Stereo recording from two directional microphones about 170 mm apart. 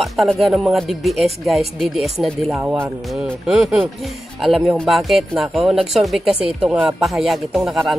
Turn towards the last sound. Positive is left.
turn(degrees=0)  # may be behind; listen again after turning